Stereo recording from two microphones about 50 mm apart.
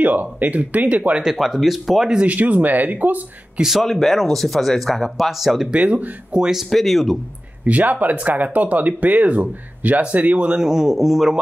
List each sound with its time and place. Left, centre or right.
0.0 s speech: right
1.2 s speech: centre
2.2 s speech: right
3.5 s a man's voice: centre
3.8 s speech: centre
5.7 s speech: right
6.7 s speech: centre
7.6 s speech: right
10.6 s a man's voice: centre